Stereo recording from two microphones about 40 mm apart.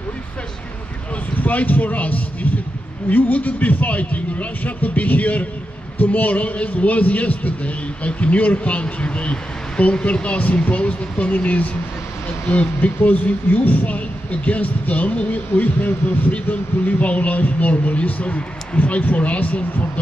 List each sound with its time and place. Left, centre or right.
1.4 s a man's voice: left